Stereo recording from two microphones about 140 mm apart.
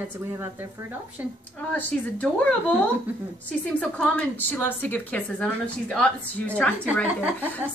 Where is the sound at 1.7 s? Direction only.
10° left (ahead or behind).